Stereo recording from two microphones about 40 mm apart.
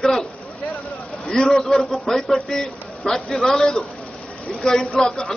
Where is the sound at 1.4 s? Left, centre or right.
Centre.